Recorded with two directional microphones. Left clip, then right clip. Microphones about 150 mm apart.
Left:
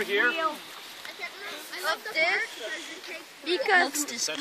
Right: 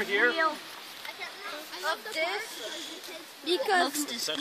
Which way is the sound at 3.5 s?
90° right.